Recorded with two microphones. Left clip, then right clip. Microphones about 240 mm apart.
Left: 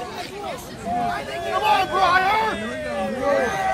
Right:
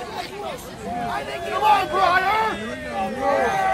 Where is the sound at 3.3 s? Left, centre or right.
Right.